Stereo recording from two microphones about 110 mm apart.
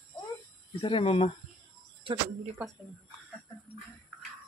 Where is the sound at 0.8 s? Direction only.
60° left (ahead or behind).